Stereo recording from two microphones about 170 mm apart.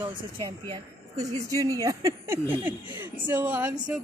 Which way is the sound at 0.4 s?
25° right (ahead or behind).